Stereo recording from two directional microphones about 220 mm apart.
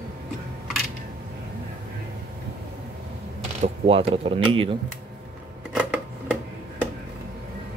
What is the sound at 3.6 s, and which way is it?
Speech, 25° right (ahead or behind).